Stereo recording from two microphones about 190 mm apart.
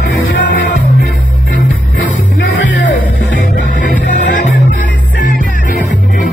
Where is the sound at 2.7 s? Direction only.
75° left (ahead or behind).